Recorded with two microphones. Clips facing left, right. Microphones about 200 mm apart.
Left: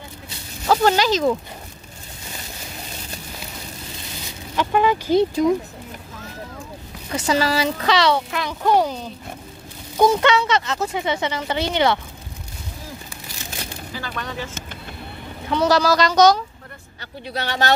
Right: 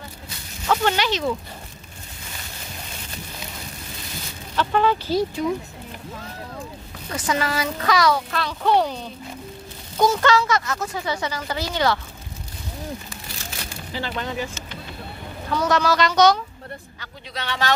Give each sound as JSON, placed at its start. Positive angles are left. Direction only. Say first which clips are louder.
{"t": 0.7, "sound": "speech", "louder": "left 4 dB", "side_deg": 40}
{"t": 4.6, "sound": "speech", "louder": "left 1 dB", "side_deg": 15}
{"t": 7.2, "sound": "speech", "louder": "left 4 dB", "side_deg": 30}
{"t": 8.3, "sound": "speech", "louder": "left 1 dB", "side_deg": 15}
{"t": 10.0, "sound": "speech", "louder": "left 2 dB", "side_deg": 25}
{"t": 13.9, "sound": "speech", "louder": "right 3 dB", "side_deg": -20}
{"t": 15.5, "sound": "speech", "louder": "left 3 dB", "side_deg": 30}
{"t": 17.5, "sound": "speech", "louder": "left 3 dB", "side_deg": 35}